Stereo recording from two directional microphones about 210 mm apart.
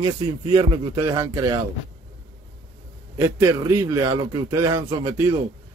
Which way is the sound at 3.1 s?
15° right (ahead or behind).